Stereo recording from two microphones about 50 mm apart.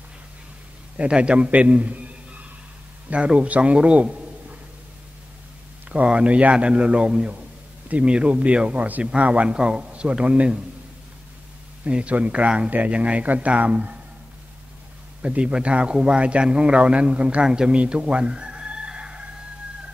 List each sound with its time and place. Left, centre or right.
0.9 s a man's voice: right
5.9 s a man's voice: right
11.8 s a man's voice: right
15.2 s a man's voice: right
17.5 s chicken: centre